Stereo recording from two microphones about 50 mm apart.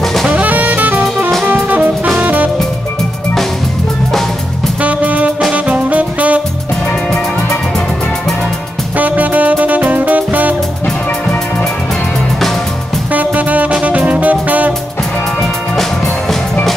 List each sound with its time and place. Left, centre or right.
0.0 s jazz: centre
0.3 s jazz: right
1.4 s music: right
4.8 s music: right
8.9 s music: right
13.1 s music: right